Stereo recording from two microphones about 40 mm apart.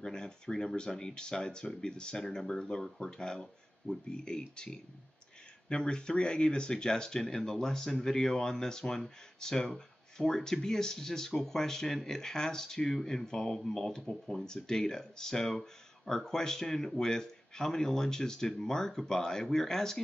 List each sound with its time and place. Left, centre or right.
0.0 s speech: centre